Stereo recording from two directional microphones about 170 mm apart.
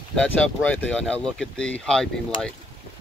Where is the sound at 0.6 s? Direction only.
10° left (ahead or behind).